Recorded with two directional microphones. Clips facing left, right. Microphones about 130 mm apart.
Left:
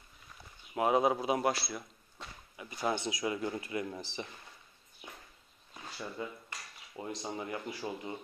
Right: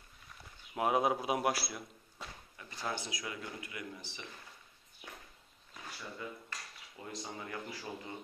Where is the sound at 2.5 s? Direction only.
15° left (ahead or behind); by 4.3 s 30° left (ahead or behind).